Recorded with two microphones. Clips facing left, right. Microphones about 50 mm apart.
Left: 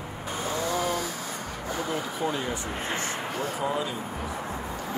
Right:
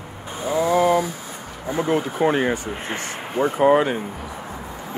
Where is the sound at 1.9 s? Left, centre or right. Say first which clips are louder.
Right 11 dB; right.